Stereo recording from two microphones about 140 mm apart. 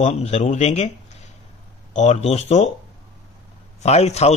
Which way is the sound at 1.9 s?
55° left (ahead or behind).